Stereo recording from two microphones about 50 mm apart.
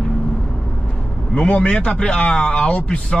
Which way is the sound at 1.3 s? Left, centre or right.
Centre.